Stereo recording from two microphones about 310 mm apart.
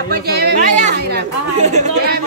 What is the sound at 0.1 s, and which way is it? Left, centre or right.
Speech, right.